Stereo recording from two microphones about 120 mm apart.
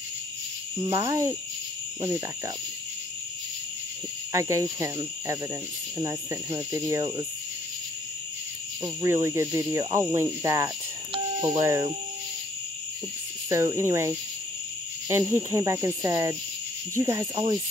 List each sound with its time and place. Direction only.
0.8 s speech: 30° right (ahead or behind)
4.3 s speech: 25° right (ahead or behind)
8.8 s speech: 25° right (ahead or behind)
13.5 s speech: 25° right (ahead or behind)